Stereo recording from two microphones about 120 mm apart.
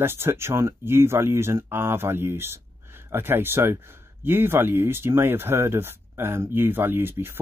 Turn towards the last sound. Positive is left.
turn(degrees=-20)  # may be behind; listen again after turning